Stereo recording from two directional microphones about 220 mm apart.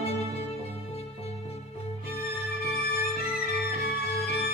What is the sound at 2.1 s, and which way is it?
Music, 45° left (ahead or behind).